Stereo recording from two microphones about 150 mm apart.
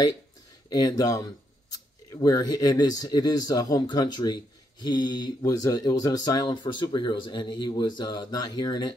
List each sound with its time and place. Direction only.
0.7 s speech: 25° left (ahead or behind)